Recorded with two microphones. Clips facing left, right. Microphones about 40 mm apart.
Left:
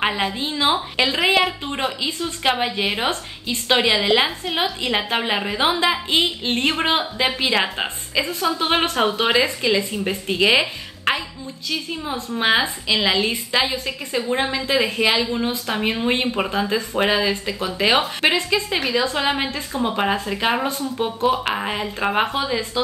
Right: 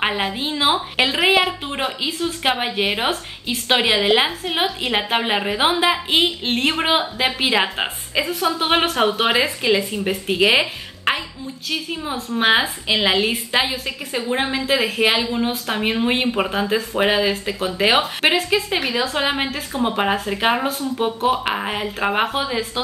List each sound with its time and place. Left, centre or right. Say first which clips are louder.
0.4 s a woman's voice: right 2 dB; centre